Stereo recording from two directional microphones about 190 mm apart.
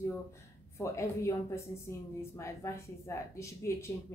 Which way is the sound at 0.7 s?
15° left (ahead or behind).